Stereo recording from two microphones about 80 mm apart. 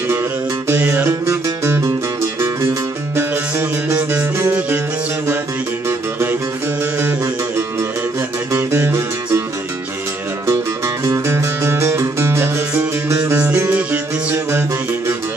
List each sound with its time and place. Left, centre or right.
0.1 s music: right
3.2 s music: right
11.2 s music: right